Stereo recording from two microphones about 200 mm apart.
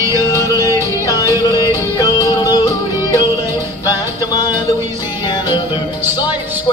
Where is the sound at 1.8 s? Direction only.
15° left (ahead or behind).